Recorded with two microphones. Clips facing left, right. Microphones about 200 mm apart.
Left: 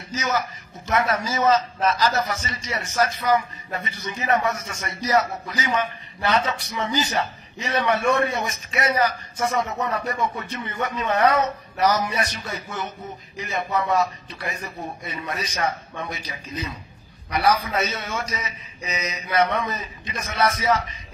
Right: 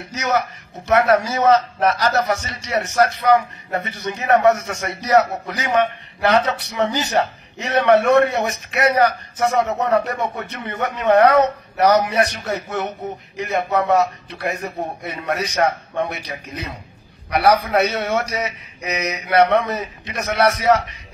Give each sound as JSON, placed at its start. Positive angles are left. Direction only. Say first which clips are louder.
{"t": 0.1, "sound": "a man's voice", "louder": "right 4 dB", "side_deg": -60}